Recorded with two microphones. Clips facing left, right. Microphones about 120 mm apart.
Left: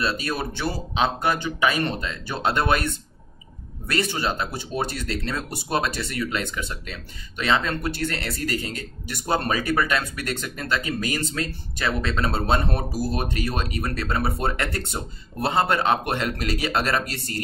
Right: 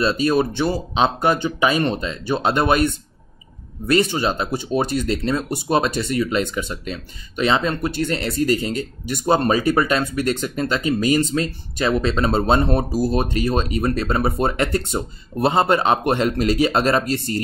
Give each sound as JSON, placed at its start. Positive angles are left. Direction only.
{"t": 0.0, "sound": "speech", "side_deg": -25}